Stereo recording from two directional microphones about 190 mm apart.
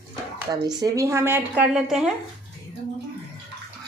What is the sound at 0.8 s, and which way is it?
Speech, 15° right (ahead or behind).